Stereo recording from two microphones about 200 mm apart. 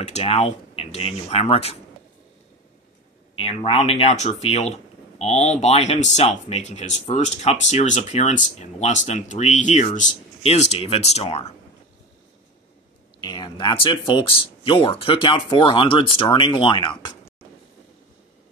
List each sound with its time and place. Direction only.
0.0 s speech: 30° left (ahead or behind)
3.3 s speech: 30° left (ahead or behind)
13.2 s speech: 20° left (ahead or behind)